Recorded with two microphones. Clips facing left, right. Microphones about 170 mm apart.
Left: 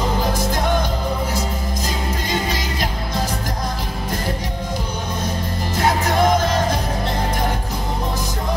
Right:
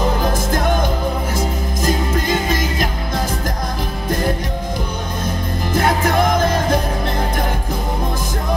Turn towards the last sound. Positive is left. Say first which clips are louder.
# right 2 dB
turn(degrees=-50)  # may be behind; listen again after turning